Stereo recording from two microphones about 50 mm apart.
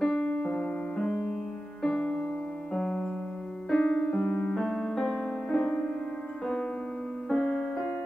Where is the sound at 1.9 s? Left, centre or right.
Left.